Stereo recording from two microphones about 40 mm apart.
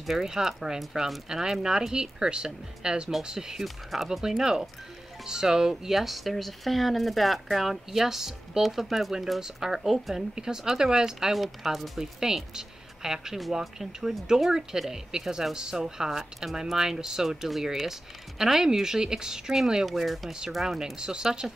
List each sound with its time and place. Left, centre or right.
0.0 s speech: centre
3.6 s speech: centre
4.2 s speech: centre
11.6 s speech: centre
12.0 s speech: centre
16.7 s speech: centre
19.9 s speech: centre